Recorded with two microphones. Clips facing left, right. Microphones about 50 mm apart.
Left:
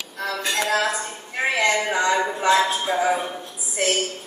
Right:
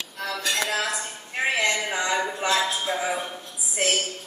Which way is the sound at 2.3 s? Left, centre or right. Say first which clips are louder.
Left 5 dB; left.